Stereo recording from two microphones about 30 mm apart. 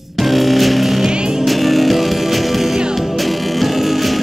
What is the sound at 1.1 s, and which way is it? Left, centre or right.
Music, right.